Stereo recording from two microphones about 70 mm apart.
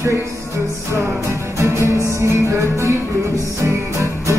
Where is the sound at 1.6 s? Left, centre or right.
Right.